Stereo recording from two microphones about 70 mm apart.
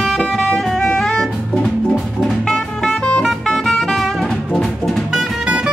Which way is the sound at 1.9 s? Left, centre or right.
Centre.